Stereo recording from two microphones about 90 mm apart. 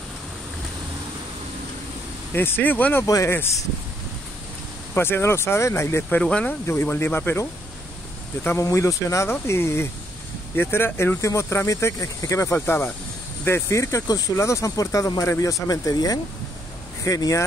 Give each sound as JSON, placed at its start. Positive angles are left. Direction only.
{"t": 2.3, "sound": "speech", "side_deg": 25}
{"t": 4.9, "sound": "speech", "side_deg": 25}
{"t": 6.0, "sound": "speech", "side_deg": 15}
{"t": 6.7, "sound": "speech", "side_deg": 25}
{"t": 8.5, "sound": "speech", "side_deg": 30}
{"t": 12.5, "sound": "speech", "side_deg": 25}